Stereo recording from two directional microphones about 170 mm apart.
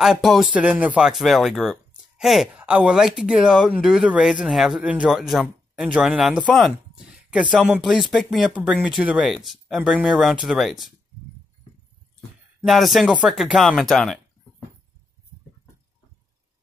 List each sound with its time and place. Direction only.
0.0 s speech: centre (ahead or behind)
12.6 s speech: centre (ahead or behind)